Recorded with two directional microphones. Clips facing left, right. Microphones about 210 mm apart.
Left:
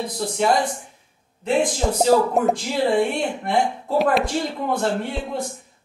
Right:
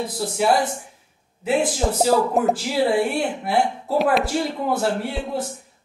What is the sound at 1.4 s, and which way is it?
Speech, 5° right (ahead or behind).